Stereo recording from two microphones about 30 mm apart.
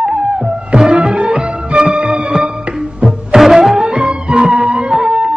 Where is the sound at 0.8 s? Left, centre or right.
Centre.